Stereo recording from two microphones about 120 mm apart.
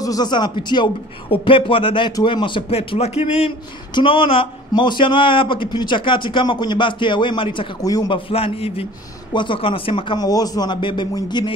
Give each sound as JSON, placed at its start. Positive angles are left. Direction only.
{"t": 0.0, "sound": "a man's voice", "side_deg": 30}
{"t": 3.9, "sound": "speech", "side_deg": 45}
{"t": 7.8, "sound": "a man's voice", "side_deg": 30}
{"t": 8.1, "sound": "speech", "side_deg": 50}
{"t": 9.3, "sound": "speech", "side_deg": 45}
{"t": 10.1, "sound": "a man's voice", "side_deg": 30}